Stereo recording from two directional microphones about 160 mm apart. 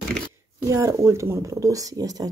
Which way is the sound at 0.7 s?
20° right (ahead or behind).